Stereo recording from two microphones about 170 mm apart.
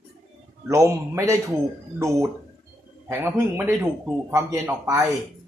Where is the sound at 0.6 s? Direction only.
15° right (ahead or behind).